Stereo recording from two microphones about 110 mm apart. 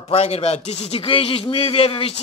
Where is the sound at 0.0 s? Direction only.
70° left (ahead or behind).